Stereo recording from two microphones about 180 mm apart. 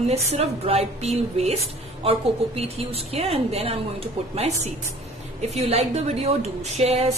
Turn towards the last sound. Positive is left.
turn(degrees=-35)  # may be behind; listen again after turning